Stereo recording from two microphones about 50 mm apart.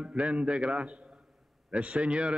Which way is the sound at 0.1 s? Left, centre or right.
Right.